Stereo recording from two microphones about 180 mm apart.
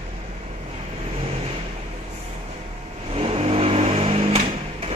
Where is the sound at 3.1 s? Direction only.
35° right (ahead or behind).